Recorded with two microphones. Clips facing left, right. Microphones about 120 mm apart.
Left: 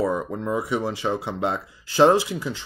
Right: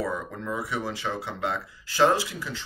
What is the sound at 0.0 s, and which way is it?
Speech, 25° left (ahead or behind).